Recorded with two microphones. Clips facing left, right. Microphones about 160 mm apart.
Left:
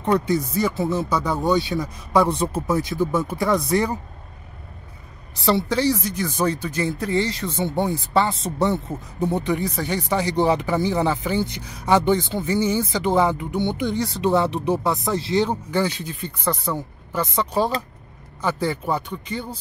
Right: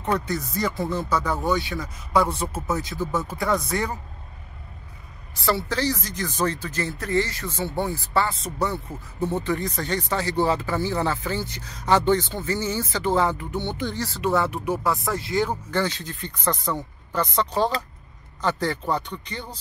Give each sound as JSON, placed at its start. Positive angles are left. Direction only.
{"t": 0.3, "sound": "speech", "side_deg": 10}
{"t": 5.4, "sound": "speech", "side_deg": 15}
{"t": 15.7, "sound": "speech", "side_deg": 10}